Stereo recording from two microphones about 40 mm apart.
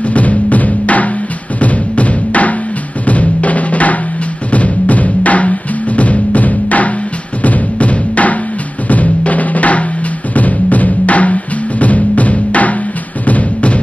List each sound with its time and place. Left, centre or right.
0.0 s music: left
3.1 s drum: left
4.5 s music: left
7.4 s drum: left
13.2 s music: left